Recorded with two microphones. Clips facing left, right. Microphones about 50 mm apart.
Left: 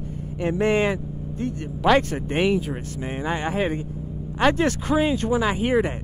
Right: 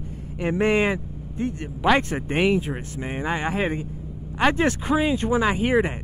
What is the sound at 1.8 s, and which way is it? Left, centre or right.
Speech, centre.